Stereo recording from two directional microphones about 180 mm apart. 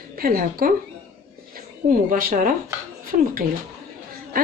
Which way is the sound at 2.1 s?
50° right (ahead or behind).